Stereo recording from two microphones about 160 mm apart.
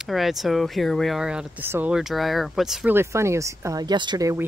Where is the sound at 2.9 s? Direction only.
15° right (ahead or behind).